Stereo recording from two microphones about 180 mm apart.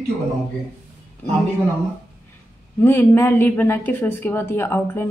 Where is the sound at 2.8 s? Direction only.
10° left (ahead or behind).